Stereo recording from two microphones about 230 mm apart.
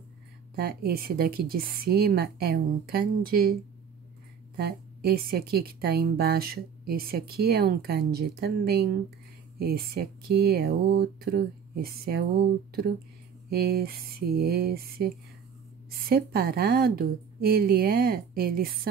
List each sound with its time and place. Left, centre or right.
0.6 s speech: right
4.6 s a woman's voice: right